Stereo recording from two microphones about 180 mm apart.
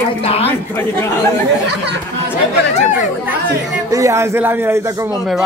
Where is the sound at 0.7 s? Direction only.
10° left (ahead or behind).